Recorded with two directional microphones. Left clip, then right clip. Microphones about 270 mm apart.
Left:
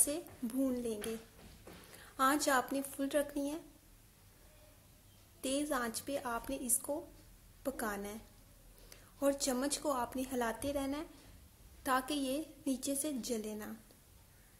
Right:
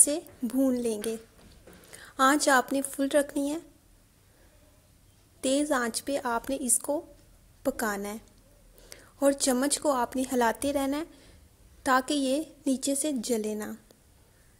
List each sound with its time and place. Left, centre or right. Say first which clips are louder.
0.0 s a woman's voice: right 10 dB; right
5.4 s a woman's voice: right 10 dB; right